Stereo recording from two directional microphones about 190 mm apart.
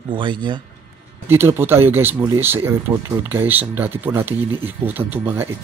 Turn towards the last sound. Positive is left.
turn(degrees=-10)  # may be behind; listen again after turning